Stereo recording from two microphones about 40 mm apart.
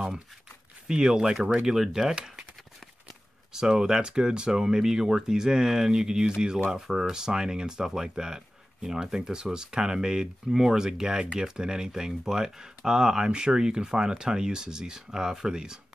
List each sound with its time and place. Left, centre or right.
0.8 s speech: right
3.5 s speech: centre